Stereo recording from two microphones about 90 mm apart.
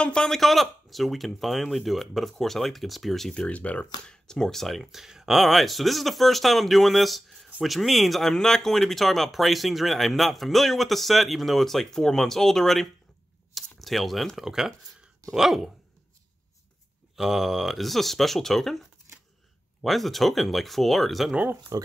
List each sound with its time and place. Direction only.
0.0 s speech: 10° left (ahead or behind)
17.1 s speech: 5° right (ahead or behind)
19.8 s speech: centre (ahead or behind)
21.7 s speech: 40° right (ahead or behind)